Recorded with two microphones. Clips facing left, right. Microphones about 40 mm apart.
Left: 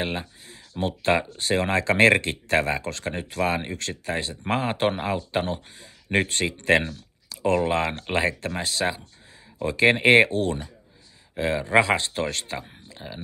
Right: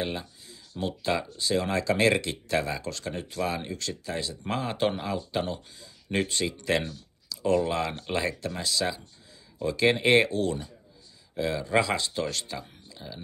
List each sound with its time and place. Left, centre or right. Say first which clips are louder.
0.0 s speech: left 3 dB; left